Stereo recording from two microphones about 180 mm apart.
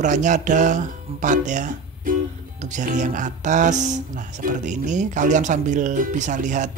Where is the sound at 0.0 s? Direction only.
45° right (ahead or behind).